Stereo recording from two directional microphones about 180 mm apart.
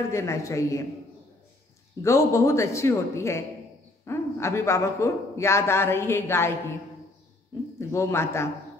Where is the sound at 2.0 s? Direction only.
15° left (ahead or behind).